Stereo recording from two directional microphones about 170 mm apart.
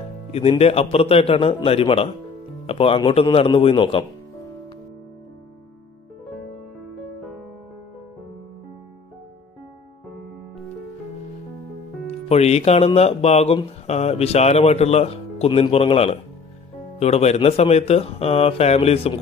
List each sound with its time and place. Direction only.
0.3 s speech: 35° left (ahead or behind)
12.3 s speech: 40° left (ahead or behind)